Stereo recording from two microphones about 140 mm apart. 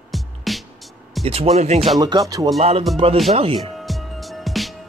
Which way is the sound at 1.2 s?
45° right (ahead or behind).